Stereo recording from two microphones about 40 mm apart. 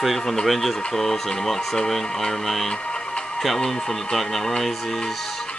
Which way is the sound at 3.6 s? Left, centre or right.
Centre.